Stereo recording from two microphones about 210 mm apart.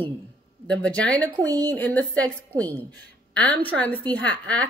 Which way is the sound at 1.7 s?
5° left (ahead or behind).